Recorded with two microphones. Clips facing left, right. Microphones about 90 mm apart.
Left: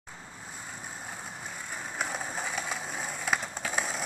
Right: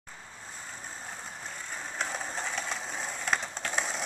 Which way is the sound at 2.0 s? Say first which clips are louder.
Left 1 dB; 10° left (ahead or behind).